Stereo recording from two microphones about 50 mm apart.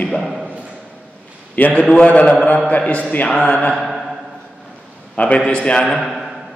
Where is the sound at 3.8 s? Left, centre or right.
Centre.